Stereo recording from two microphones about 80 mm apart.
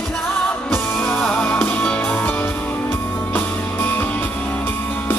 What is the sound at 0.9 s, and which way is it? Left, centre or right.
Music, centre.